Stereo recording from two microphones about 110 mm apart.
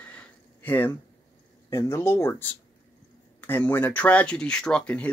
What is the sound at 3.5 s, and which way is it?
Speech, 20° left (ahead or behind).